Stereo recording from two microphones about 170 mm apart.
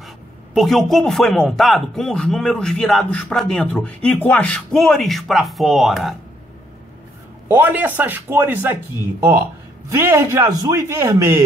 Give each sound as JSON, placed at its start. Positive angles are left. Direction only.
{"t": 0.6, "sound": "speech", "side_deg": 0}
{"t": 7.4, "sound": "a man's voice", "side_deg": -10}
{"t": 9.8, "sound": "a man's voice", "side_deg": -15}